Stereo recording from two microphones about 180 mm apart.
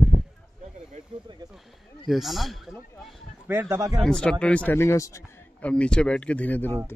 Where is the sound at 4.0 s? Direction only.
5° left (ahead or behind).